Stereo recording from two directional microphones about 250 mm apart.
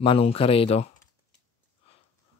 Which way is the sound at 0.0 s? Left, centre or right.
Left.